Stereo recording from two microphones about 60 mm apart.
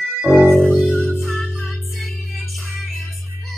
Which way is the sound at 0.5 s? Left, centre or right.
Centre.